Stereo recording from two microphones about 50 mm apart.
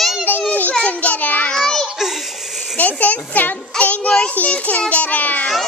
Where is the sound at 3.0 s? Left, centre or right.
Left.